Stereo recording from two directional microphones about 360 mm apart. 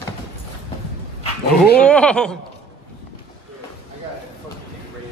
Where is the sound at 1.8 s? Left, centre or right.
Centre.